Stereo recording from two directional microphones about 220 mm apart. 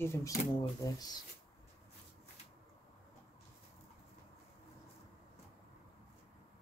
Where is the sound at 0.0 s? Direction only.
10° left (ahead or behind).